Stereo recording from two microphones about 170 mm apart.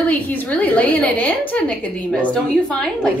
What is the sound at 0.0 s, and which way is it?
A woman's voice, 10° left (ahead or behind).